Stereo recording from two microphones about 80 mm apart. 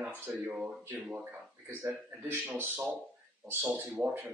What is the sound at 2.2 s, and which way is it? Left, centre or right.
Speech, right.